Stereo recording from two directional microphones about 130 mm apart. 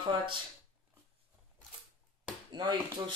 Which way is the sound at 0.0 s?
40° right (ahead or behind).